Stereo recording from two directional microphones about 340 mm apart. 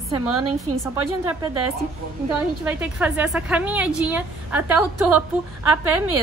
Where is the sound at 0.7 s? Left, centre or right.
Centre.